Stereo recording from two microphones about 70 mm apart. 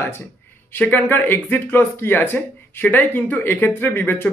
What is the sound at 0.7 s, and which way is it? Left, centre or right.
Speech, left.